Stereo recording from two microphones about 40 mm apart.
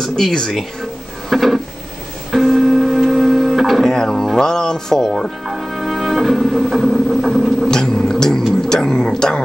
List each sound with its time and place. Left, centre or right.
0.1 s speech: centre
1.3 s a sound: centre
2.3 s music: centre
3.8 s music: centre
4.4 s speech: centre
5.5 s music: centre
7.6 s a sound: centre
8.5 s speech: centre